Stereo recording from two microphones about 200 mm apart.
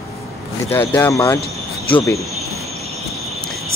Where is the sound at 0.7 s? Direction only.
10° left (ahead or behind).